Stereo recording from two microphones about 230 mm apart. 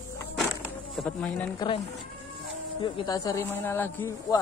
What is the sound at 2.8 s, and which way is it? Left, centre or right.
A man's voice, left.